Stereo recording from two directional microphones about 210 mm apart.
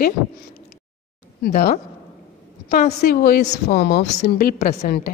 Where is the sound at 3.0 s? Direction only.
45° left (ahead or behind).